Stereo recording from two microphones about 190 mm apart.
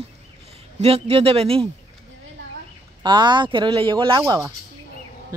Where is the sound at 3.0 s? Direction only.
25° right (ahead or behind).